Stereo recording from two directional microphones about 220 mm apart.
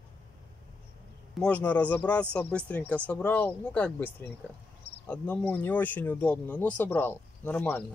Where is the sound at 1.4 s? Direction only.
5° left (ahead or behind).